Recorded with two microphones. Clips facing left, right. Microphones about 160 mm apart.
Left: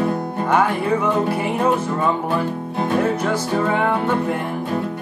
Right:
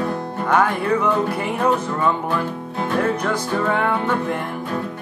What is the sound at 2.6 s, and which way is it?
Music, 20° left (ahead or behind).